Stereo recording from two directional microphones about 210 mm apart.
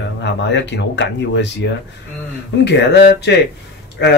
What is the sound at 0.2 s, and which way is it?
Speech, 55° left (ahead or behind).